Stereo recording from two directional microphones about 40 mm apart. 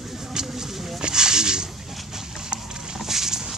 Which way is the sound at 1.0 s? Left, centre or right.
Centre.